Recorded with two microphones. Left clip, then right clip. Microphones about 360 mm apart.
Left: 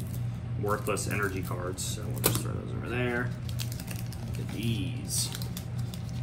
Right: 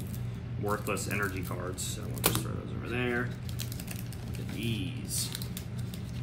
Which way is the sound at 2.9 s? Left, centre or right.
Centre.